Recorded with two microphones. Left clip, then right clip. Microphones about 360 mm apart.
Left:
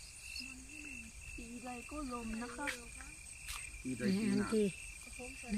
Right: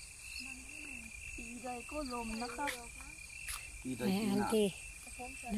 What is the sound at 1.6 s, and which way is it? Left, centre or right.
Speech, centre.